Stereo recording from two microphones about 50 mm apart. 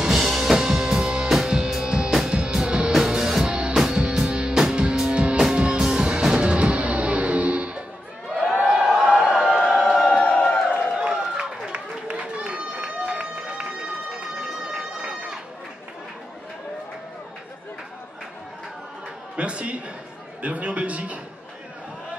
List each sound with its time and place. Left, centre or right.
0.0 s drum kit: centre
1.3 s music: centre
8.4 s a sound: centre
12.1 s run: right
14.7 s run: centre
19.3 s a sound: right